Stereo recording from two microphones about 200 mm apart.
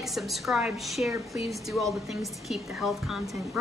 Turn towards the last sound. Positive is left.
turn(degrees=0)  # may be behind; listen again after turning